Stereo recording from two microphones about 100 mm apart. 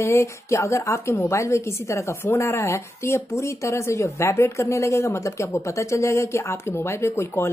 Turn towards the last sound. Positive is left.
turn(degrees=25)  # may be behind; listen again after turning